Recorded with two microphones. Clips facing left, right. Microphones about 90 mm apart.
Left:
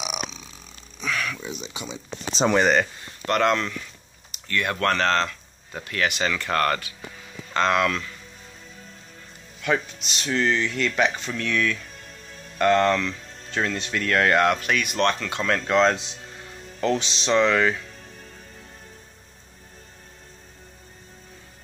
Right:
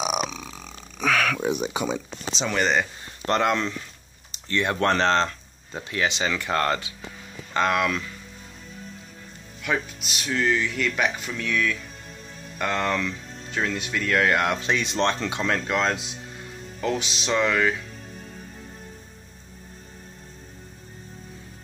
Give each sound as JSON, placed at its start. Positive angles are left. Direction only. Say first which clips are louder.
{"t": 0.0, "sound": "grunt", "louder": "right 6 dB", "side_deg": -45}
{"t": 3.3, "sound": "speech", "louder": "left 2 dB", "side_deg": -20}
{"t": 9.6, "sound": "speech", "louder": "left 2 dB", "side_deg": -5}
{"t": 12.9, "sound": "music", "louder": "left 2 dB", "side_deg": -15}
{"t": 13.7, "sound": "speech", "louder": "right 1 dB", "side_deg": -5}
{"t": 14.5, "sound": "speech", "louder": "left 1 dB", "side_deg": -25}
{"t": 15.5, "sound": "speech", "louder": "left 7 dB", "side_deg": -5}